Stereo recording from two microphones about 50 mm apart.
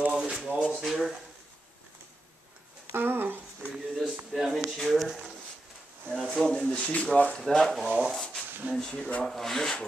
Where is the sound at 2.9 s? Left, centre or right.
Right.